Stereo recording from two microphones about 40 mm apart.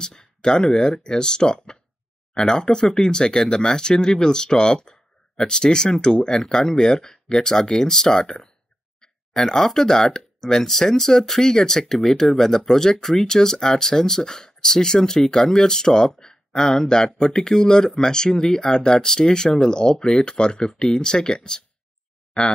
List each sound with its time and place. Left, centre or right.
0.0 s speech: centre
9.0 s a sound: centre
9.7 s speech: centre